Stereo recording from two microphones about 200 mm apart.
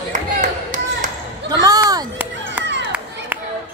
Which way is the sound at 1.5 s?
20° right (ahead or behind).